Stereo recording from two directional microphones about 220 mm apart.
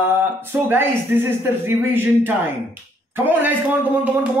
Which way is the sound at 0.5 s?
10° right (ahead or behind).